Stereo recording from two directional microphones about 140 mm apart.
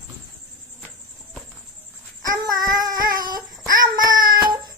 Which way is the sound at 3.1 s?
30° right (ahead or behind).